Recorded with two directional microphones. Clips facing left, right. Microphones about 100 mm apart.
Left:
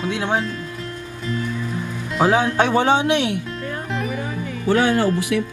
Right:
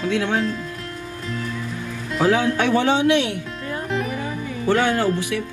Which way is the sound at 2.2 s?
20° left (ahead or behind).